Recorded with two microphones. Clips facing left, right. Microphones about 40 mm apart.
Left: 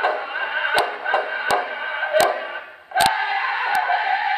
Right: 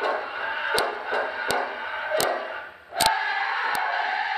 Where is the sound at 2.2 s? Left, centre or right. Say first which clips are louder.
Left 8 dB; left.